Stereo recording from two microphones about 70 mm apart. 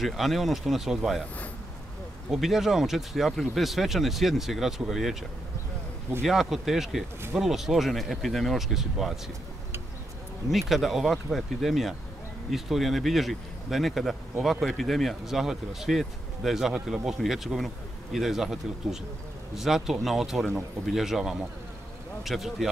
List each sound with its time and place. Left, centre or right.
0.0 s speech: centre
2.3 s speech: centre
6.2 s speech: centre
10.5 s speech: centre